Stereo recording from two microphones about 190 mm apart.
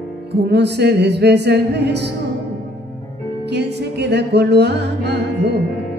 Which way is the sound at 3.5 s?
60° right (ahead or behind).